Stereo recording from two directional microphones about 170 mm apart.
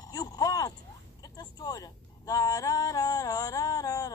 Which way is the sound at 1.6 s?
20° left (ahead or behind).